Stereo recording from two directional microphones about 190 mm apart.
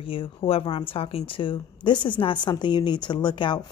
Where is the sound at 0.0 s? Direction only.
30° left (ahead or behind).